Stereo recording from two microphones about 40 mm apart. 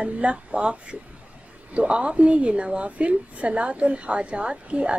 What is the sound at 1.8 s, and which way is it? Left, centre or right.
A woman's voice, right.